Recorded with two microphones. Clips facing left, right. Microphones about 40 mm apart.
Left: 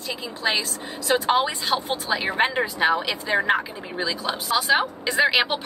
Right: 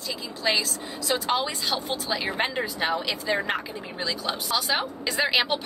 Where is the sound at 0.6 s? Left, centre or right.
Left.